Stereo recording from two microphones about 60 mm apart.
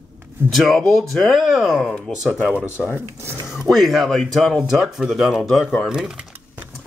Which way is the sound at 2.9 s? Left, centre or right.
Right.